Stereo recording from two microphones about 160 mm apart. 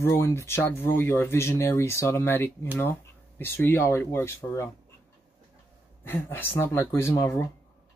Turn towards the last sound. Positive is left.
turn(degrees=20)  # may be behind; listen again after turning